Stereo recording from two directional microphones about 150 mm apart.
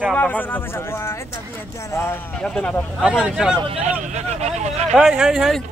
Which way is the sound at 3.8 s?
55° right (ahead or behind).